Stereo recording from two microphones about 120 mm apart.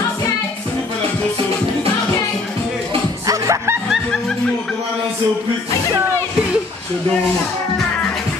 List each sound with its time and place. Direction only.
3.3 s snicker: 25° right (ahead or behind)